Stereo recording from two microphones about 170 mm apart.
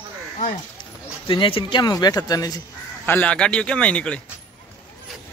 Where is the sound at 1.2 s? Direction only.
30° left (ahead or behind).